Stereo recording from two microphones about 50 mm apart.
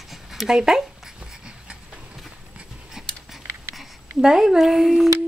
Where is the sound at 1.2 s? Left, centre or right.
Centre.